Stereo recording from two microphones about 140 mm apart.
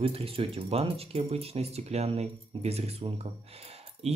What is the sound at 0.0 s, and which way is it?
Speech, 45° right (ahead or behind).